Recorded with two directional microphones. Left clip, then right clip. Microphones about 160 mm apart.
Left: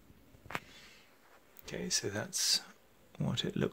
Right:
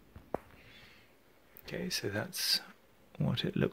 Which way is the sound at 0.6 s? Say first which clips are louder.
Even; centre (ahead or behind).